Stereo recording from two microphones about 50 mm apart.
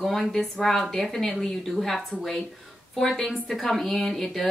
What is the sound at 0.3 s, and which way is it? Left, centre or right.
Speech, centre.